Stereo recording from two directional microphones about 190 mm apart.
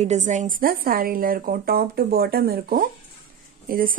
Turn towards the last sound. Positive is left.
turn(degrees=-50)  # may be behind; listen again after turning